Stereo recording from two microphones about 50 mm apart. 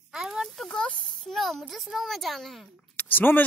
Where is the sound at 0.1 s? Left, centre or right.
Centre.